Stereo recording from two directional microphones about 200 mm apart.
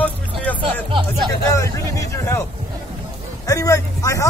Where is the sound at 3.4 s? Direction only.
15° left (ahead or behind).